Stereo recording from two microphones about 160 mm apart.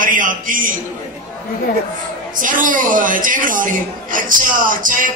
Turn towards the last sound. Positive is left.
turn(degrees=-55)  # may be behind; listen again after turning